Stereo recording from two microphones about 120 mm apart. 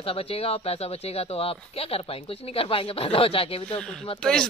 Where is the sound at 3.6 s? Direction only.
10° left (ahead or behind).